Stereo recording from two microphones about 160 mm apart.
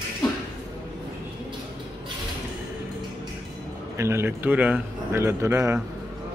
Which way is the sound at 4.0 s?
15° right (ahead or behind).